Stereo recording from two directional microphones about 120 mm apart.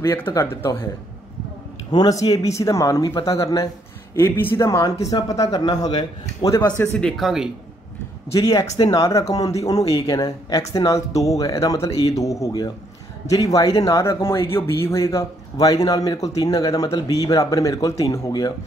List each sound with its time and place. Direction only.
0.0 s speech: 25° left (ahead or behind)
1.9 s speech: 35° left (ahead or behind)
4.1 s a man's voice: 20° left (ahead or behind); by 6.5 s 35° left (ahead or behind)
6.5 s speech: 20° left (ahead or behind)
6.9 s speech: 5° left (ahead or behind)
8.3 s speech: 25° left (ahead or behind)